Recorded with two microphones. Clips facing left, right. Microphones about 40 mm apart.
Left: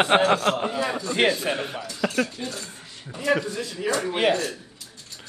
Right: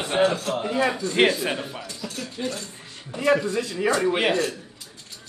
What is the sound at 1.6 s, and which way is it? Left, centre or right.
Speech, left.